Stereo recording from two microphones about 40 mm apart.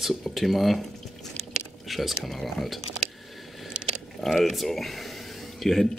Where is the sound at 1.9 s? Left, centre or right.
Centre.